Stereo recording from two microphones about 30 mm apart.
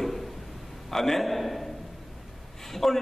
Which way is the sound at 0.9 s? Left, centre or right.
Centre.